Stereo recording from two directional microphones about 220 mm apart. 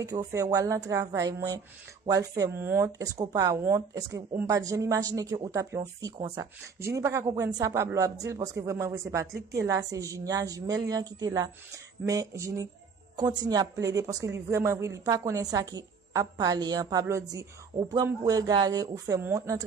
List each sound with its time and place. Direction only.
0.0 s speech: 15° right (ahead or behind)